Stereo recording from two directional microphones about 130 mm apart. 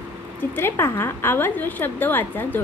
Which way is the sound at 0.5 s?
20° left (ahead or behind).